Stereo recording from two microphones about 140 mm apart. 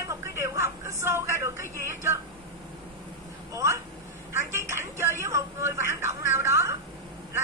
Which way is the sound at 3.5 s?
20° right (ahead or behind).